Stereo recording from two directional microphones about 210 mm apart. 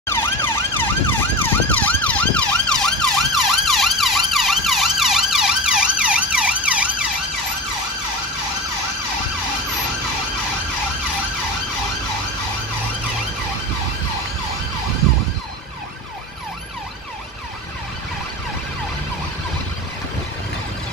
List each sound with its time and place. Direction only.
0.1 s emergency vehicle: 10° left (ahead or behind); by 6.9 s 5° right (ahead or behind)